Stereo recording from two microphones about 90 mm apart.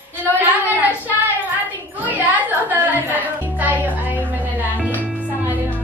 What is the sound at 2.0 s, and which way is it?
Music, 20° right (ahead or behind).